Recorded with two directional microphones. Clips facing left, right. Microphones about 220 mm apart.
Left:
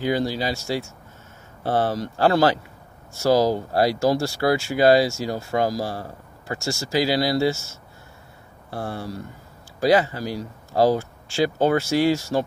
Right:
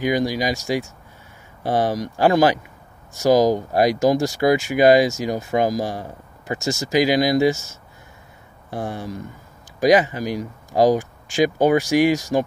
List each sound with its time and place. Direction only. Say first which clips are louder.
0.0 s speech: right 2 dB; 15° right (ahead or behind)